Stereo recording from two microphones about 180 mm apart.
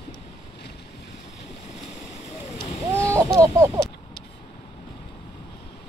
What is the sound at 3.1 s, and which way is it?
Chicken, 15° right (ahead or behind).